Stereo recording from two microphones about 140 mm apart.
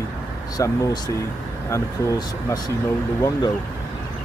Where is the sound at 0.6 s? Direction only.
25° left (ahead or behind).